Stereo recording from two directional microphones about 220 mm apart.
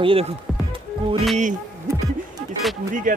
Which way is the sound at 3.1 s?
35° right (ahead or behind).